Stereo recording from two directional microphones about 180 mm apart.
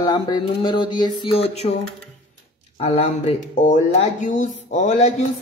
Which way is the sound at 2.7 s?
35° left (ahead or behind).